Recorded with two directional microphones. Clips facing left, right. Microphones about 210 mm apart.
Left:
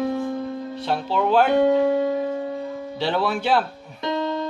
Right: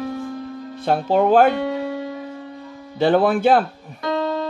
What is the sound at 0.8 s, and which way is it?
Speech, 50° right (ahead or behind).